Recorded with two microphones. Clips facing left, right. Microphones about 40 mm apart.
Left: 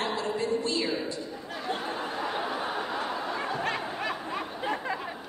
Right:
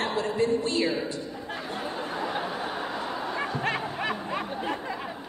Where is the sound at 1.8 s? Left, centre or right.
Centre.